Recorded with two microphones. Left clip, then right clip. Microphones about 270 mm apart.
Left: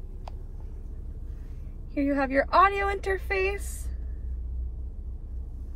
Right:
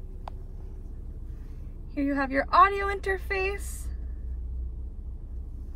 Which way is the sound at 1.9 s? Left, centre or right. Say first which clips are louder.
Left 2 dB; centre.